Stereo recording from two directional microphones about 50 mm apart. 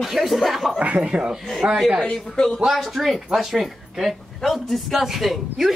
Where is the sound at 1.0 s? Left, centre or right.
Centre.